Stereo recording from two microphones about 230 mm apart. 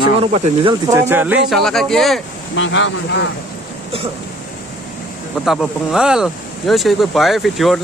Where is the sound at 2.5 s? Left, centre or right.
Left.